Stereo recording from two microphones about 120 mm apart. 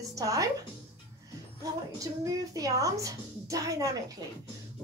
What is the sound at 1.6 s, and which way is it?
A woman's voice, 30° right (ahead or behind).